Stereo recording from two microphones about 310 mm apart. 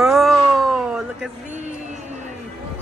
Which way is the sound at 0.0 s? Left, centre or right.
Centre.